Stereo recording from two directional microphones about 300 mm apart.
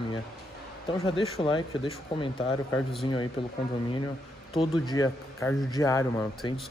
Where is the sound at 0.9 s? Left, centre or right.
Centre.